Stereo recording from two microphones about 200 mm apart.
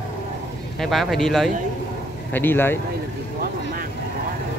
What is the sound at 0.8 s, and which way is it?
Speech, centre (ahead or behind).